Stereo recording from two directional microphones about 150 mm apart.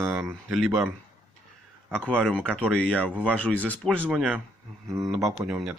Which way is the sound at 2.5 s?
5° left (ahead or behind).